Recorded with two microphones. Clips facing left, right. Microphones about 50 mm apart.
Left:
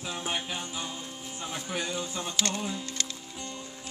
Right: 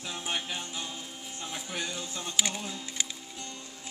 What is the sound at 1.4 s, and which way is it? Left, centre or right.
Speech, centre.